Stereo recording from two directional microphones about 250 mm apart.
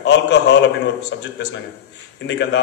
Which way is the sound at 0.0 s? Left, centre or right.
Left.